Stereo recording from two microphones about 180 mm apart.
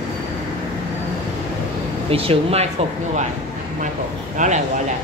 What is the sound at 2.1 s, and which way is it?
Speech, 30° right (ahead or behind).